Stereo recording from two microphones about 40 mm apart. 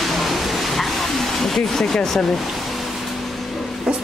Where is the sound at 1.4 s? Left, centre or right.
Centre.